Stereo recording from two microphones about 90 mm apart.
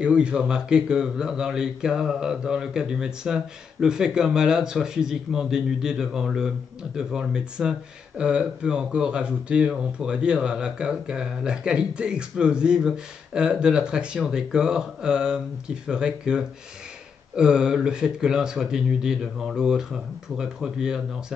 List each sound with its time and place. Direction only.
0.0 s speech: 10° right (ahead or behind)